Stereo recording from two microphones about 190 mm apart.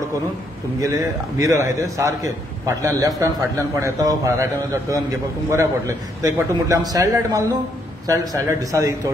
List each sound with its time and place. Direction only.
1.4 s a man's voice: 15° right (ahead or behind)